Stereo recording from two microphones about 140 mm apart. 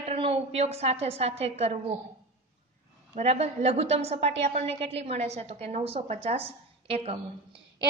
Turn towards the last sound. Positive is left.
turn(degrees=-40)  # may be behind; listen again after turning